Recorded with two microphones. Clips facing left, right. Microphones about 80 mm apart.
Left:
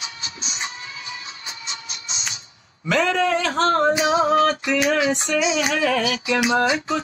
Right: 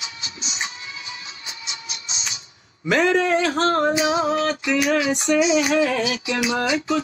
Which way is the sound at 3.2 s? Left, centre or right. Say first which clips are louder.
Right 1 dB; right.